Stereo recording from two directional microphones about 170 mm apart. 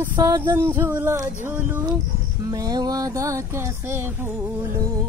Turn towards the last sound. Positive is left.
turn(degrees=-15)  # may be behind; listen again after turning